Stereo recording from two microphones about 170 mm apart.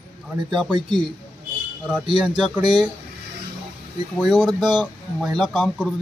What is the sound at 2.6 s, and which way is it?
Speech, 25° right (ahead or behind).